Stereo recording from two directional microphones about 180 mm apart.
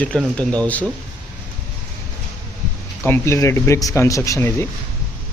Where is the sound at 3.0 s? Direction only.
15° left (ahead or behind).